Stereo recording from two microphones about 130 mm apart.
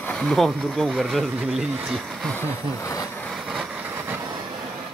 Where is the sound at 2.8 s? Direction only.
20° left (ahead or behind).